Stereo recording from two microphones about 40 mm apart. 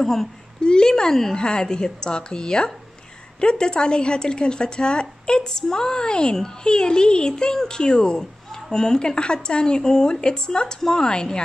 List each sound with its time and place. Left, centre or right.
0.0 s speech: centre
0.6 s speech: centre